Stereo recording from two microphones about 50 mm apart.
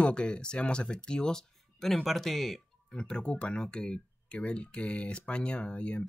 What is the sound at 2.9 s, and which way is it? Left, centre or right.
Speech, centre.